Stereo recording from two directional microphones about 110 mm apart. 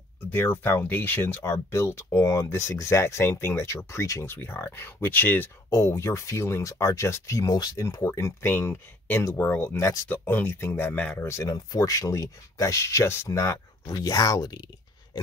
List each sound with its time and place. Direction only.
0.3 s speech: 20° left (ahead or behind)
9.2 s speech: 30° left (ahead or behind)
11.5 s speech: 35° left (ahead or behind)